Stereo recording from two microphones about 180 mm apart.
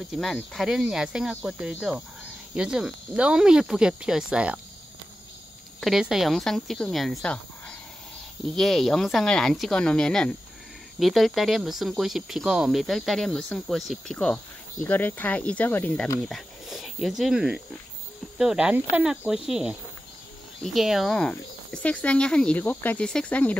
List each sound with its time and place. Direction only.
0.1 s speech: centre (ahead or behind)
5.8 s speech: centre (ahead or behind)